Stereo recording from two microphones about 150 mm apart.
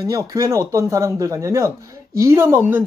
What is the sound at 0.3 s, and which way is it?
Speech, 20° right (ahead or behind).